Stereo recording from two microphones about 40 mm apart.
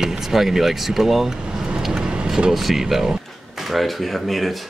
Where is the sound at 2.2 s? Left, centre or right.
Centre.